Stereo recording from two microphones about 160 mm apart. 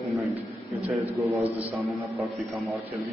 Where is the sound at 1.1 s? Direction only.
40° right (ahead or behind).